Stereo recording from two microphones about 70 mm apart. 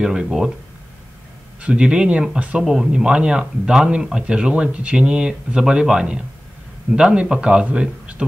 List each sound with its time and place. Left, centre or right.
0.0 s speech: centre
1.6 s speech: centre